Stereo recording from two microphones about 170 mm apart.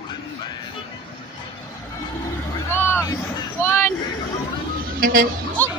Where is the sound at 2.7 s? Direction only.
15° left (ahead or behind).